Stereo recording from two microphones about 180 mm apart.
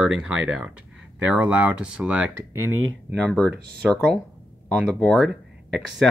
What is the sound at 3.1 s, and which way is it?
Speech, 5° left (ahead or behind).